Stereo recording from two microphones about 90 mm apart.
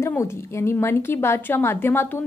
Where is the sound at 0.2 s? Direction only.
30° left (ahead or behind).